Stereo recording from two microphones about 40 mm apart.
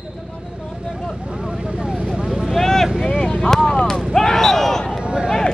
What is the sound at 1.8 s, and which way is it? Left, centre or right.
Vehicle, centre.